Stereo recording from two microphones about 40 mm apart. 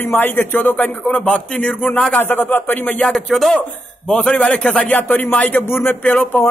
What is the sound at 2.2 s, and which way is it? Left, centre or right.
Speech, left.